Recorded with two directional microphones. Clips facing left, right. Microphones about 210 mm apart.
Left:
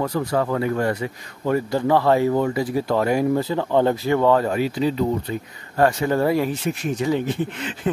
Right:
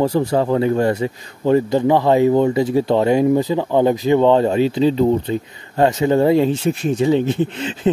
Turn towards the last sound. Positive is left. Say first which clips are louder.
# right 5 dB
turn(degrees=-25)  # may be behind; listen again after turning